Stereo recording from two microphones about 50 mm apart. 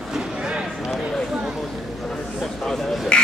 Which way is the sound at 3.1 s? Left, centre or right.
Centre.